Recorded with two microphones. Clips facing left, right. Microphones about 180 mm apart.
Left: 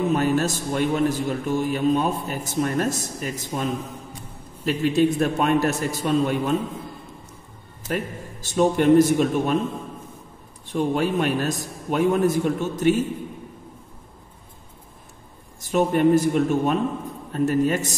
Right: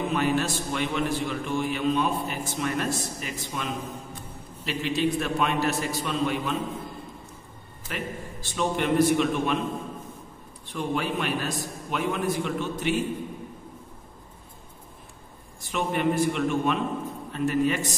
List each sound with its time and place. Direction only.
0.1 s a man's voice: 40° left (ahead or behind)
7.9 s a man's voice: 45° left (ahead or behind)
10.7 s a man's voice: 45° left (ahead or behind)
15.6 s a man's voice: 40° left (ahead or behind)